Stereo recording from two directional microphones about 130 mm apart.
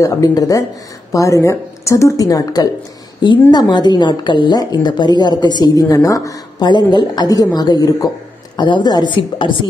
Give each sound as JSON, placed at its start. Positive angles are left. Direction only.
{"t": 0.0, "sound": "a woman's voice", "side_deg": 30}